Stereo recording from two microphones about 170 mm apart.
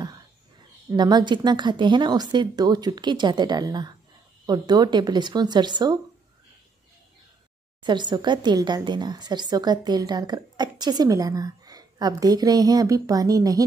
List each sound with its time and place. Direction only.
0.8 s a woman's voice: 25° right (ahead or behind)
7.8 s a woman's voice: 25° right (ahead or behind)